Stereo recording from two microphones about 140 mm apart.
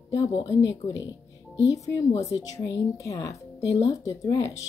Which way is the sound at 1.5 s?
25° left (ahead or behind).